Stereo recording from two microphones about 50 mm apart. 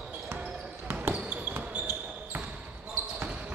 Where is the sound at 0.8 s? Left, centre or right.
Right.